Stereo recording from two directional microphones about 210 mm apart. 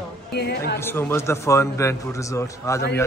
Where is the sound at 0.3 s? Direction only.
50° left (ahead or behind).